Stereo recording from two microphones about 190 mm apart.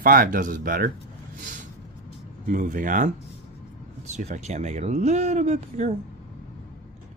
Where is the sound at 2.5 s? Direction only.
40° right (ahead or behind).